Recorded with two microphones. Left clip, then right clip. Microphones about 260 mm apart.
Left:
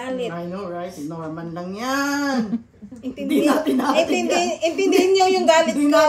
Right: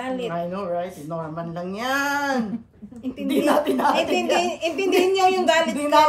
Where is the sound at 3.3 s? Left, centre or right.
Right.